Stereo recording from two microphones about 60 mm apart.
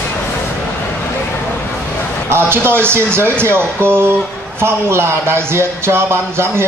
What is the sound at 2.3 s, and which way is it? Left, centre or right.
Speech, right.